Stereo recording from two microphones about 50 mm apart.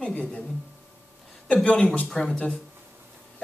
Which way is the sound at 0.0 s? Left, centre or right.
Left.